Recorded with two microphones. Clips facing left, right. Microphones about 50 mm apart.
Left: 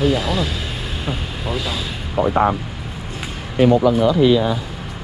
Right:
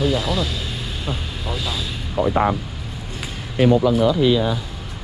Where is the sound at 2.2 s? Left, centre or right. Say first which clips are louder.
Left 2 dB; left.